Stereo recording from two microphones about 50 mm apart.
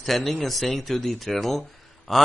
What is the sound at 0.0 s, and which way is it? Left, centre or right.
Speech, centre.